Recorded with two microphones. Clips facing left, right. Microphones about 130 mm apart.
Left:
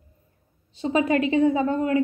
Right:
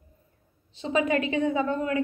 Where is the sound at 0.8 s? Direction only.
30° left (ahead or behind).